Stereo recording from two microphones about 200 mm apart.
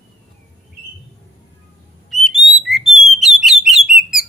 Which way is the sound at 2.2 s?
Centre (ahead or behind).